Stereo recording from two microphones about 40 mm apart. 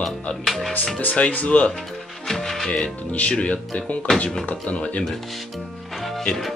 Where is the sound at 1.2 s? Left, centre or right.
Left.